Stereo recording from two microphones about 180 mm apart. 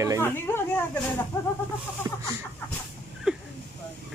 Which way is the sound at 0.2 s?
10° left (ahead or behind).